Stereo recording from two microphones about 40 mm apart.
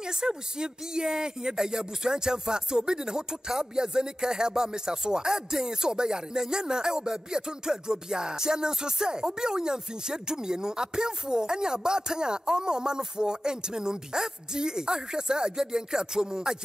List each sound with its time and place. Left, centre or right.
0.0 s speech: centre